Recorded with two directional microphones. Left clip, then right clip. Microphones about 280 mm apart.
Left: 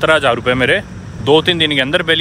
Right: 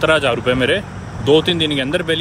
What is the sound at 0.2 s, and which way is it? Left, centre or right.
Speech, centre.